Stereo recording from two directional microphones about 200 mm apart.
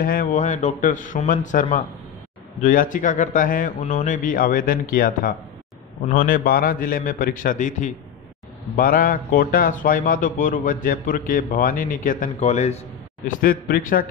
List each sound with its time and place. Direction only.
0.0 s a man's voice: 45° left (ahead or behind)
13.4 s a man's voice: 45° left (ahead or behind)